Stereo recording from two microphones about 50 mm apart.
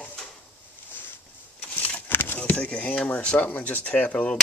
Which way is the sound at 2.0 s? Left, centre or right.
Left.